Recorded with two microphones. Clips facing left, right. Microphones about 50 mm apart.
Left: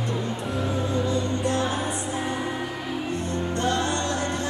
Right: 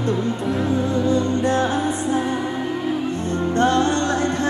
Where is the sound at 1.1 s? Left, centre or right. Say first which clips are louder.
Right 6 dB; right.